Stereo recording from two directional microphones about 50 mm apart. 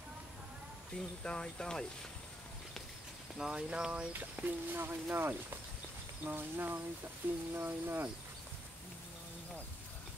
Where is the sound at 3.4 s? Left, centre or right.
Centre.